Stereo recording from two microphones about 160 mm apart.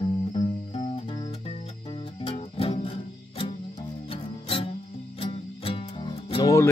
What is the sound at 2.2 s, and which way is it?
Music, 35° left (ahead or behind).